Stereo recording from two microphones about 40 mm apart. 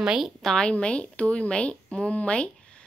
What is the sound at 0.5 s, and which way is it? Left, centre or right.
Speech, left.